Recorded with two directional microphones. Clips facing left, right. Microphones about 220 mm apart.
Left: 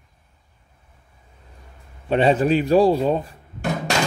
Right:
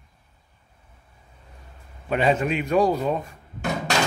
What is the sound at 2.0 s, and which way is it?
A man's voice, 30° left (ahead or behind).